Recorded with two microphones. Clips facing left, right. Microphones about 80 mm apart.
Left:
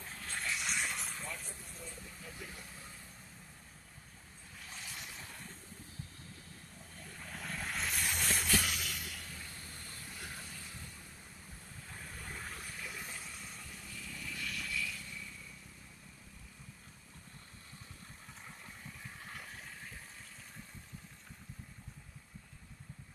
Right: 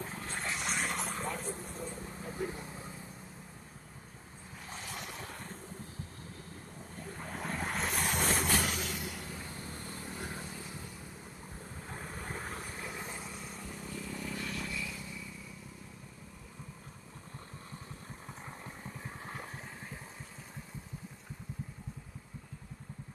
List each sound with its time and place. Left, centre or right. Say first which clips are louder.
0.1 s vehicle: right 2 dB; right
4.6 s waves: right 6 dB; right
7.0 s vehicle: right 6 dB; right
11.9 s vehicle: right 6 dB; right; by 15.2 s centre
18.9 s vehicle: right 5 dB; right